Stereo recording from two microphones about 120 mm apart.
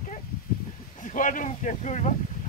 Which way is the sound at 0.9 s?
90° left.